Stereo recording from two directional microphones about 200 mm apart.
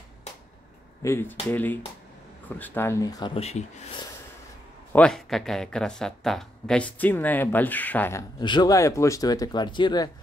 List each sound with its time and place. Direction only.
1.0 s speech: 15° left (ahead or behind); by 3.6 s 30° left (ahead or behind)
4.9 s speech: 5° left (ahead or behind); by 10.1 s 20° left (ahead or behind)